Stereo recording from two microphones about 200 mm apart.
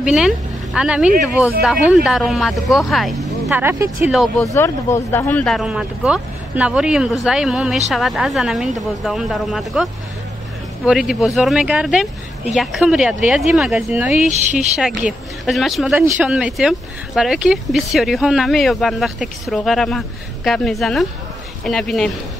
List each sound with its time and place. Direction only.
0.0 s speech: centre (ahead or behind)
3.6 s speech: 15° right (ahead or behind)
4.0 s speech: centre (ahead or behind)
4.6 s speech: 15° left (ahead or behind)
10.9 s speech: 5° right (ahead or behind)